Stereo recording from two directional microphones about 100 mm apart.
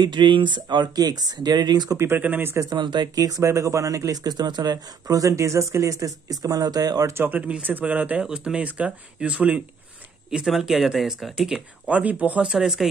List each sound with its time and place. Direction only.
0.0 s speech: 50° right (ahead or behind)
2.0 s speech: 20° right (ahead or behind)
2.7 s speech: 50° right (ahead or behind); by 12.8 s 5° right (ahead or behind)